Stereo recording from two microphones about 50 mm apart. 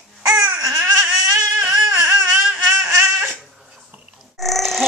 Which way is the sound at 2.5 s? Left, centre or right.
Right.